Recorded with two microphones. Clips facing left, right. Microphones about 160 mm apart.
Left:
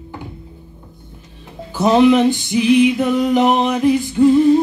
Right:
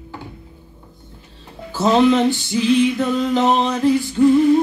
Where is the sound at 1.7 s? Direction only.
15° left (ahead or behind).